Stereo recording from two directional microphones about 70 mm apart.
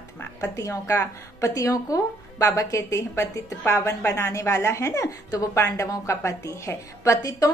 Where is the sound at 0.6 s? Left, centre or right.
Left.